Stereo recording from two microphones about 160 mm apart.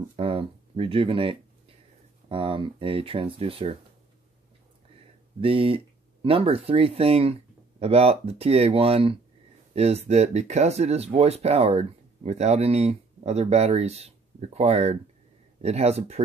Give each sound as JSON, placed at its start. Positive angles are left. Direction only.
{"t": 0.1, "sound": "speech", "side_deg": -35}
{"t": 5.4, "sound": "speech", "side_deg": -35}